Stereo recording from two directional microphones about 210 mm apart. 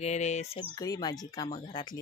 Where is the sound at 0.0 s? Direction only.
35° left (ahead or behind).